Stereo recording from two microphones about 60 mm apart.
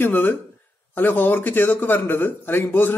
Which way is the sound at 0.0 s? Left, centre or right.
Left.